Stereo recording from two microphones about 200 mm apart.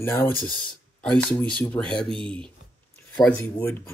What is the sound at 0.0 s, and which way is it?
Speech, 10° left (ahead or behind).